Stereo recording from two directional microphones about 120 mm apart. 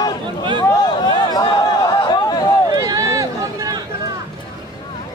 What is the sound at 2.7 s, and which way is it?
Run, 30° right (ahead or behind).